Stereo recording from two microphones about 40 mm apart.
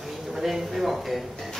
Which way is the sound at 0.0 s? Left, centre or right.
Centre.